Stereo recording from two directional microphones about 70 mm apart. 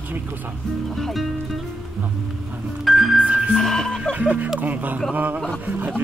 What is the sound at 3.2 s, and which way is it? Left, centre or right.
Music, centre.